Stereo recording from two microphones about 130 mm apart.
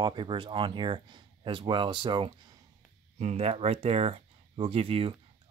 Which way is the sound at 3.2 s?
60° right (ahead or behind).